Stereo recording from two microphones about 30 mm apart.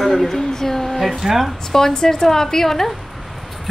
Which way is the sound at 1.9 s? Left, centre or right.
Left.